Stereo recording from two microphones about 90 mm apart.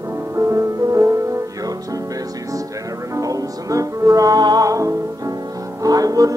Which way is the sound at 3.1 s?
40° right (ahead or behind).